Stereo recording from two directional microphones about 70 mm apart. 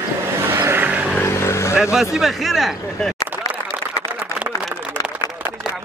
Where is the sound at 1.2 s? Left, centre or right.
Left.